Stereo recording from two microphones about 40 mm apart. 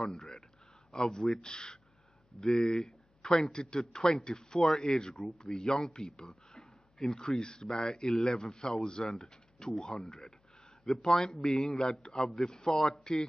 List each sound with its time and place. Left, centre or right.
0.0 s speech: centre
2.4 s speech: centre
5.1 s speech: centre